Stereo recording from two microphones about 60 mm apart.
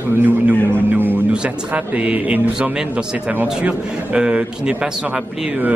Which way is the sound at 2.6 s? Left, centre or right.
Centre.